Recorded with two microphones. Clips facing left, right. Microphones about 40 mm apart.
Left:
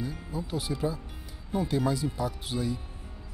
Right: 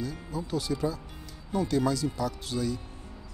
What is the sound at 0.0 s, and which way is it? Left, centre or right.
Music, centre.